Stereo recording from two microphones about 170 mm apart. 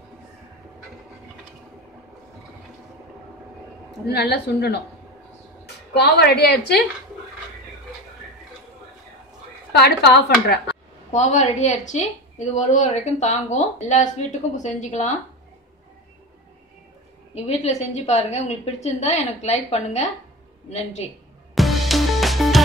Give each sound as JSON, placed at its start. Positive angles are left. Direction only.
{"t": 4.1, "sound": "speech", "side_deg": 80}
{"t": 6.1, "sound": "speech", "side_deg": 75}
{"t": 9.7, "sound": "speech", "side_deg": 75}
{"t": 11.1, "sound": "a woman's voice", "side_deg": 45}
{"t": 17.3, "sound": "a woman's voice", "side_deg": 40}
{"t": 21.5, "sound": "music", "side_deg": 0}